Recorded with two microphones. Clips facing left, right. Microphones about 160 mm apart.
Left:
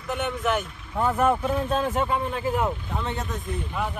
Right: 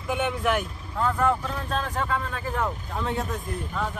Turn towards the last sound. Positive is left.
turn(degrees=0)  # may be behind; listen again after turning